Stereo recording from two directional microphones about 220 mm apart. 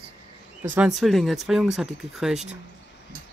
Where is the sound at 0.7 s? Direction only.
5° right (ahead or behind).